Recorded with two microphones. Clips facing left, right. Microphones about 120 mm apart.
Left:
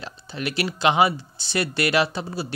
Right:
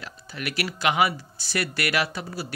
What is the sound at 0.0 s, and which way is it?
Speech, 25° left (ahead or behind).